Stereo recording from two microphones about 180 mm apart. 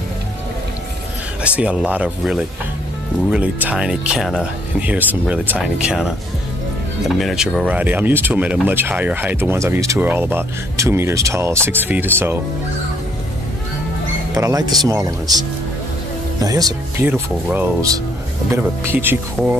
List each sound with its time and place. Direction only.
1.4 s speech: 5° right (ahead or behind)
7.2 s speech: centre (ahead or behind)
14.3 s speech: 20° right (ahead or behind)
17.1 s speech: 10° right (ahead or behind)